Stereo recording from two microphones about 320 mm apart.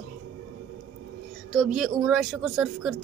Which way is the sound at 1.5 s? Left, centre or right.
Centre.